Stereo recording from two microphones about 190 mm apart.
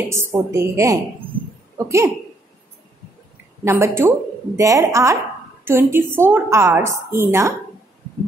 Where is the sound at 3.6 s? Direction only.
15° right (ahead or behind).